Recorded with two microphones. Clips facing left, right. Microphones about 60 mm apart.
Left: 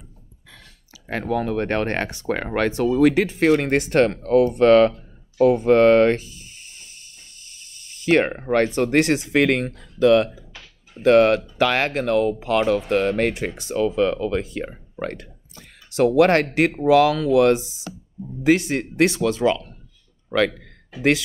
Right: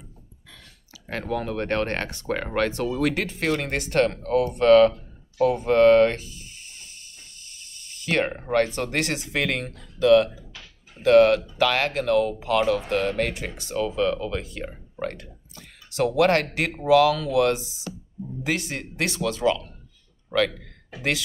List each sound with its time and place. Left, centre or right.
1.0 s speech: centre
3.3 s speech: left
7.4 s a man's voice: left